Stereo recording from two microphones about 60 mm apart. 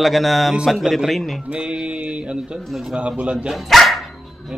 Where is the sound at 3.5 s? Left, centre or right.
Centre.